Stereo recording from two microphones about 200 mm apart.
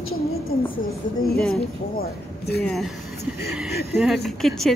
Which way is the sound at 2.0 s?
50° left (ahead or behind).